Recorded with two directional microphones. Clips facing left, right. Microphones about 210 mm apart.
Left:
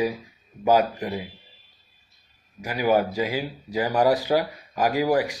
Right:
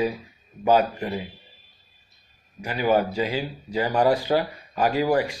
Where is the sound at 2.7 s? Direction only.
10° left (ahead or behind).